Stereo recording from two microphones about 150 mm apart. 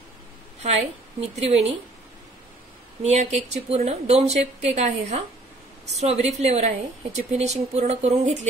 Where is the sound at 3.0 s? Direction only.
50° right (ahead or behind).